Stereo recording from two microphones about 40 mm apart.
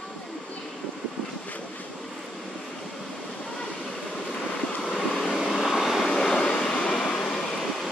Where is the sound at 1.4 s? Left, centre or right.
Left.